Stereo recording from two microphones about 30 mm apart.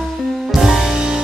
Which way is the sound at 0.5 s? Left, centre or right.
Centre.